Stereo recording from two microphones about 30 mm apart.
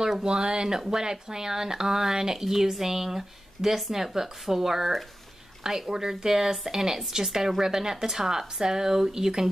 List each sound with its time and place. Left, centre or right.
0.2 s speech: right